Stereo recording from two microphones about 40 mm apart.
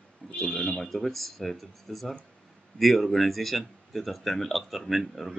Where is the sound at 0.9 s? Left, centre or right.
Centre.